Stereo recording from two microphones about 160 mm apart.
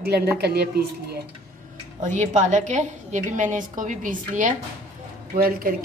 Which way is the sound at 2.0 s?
50° right (ahead or behind).